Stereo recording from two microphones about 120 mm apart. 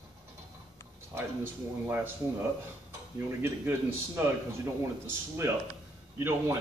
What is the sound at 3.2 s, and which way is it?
Speech, 20° right (ahead or behind).